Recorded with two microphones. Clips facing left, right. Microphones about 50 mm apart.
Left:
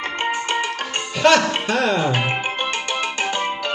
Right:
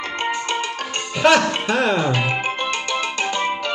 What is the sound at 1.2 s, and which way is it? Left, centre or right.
Speech, centre.